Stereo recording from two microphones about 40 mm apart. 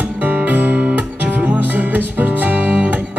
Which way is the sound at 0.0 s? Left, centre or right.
Right.